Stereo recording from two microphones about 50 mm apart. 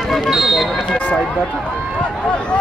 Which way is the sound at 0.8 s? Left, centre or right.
Left.